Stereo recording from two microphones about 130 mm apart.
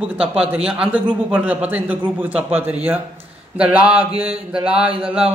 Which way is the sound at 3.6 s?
10° right (ahead or behind).